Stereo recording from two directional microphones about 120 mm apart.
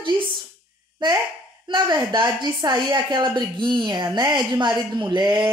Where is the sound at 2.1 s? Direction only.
35° right (ahead or behind).